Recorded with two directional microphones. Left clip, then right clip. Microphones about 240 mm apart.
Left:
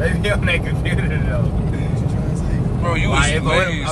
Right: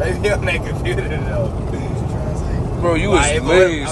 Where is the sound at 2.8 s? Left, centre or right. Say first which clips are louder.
Right 4 dB; right.